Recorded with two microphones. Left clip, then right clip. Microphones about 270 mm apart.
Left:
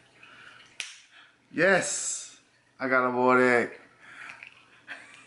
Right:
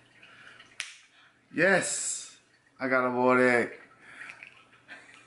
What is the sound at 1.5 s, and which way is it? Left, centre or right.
Speech, centre.